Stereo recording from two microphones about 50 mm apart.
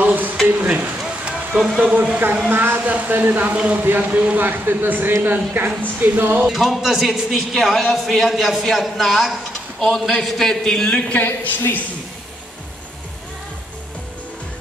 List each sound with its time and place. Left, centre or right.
0.0 s a sound: right
1.5 s speech: right
2.5 s speech: right
3.8 s speech: right
6.4 s a man's voice: centre
11.1 s a man's voice: left